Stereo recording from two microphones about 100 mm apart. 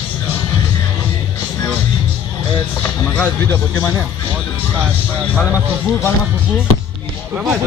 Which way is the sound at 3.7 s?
30° left (ahead or behind).